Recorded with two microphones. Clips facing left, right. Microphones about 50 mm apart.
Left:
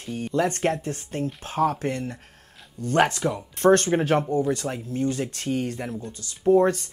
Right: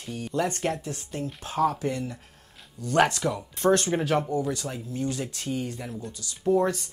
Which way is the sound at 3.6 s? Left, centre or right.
Left.